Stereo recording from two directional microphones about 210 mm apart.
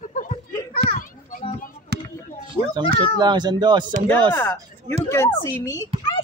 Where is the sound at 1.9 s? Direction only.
50° right (ahead or behind).